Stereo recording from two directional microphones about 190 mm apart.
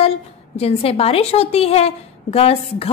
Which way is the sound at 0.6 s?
30° left (ahead or behind).